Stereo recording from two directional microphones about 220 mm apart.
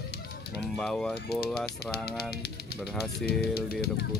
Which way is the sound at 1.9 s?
45° left (ahead or behind).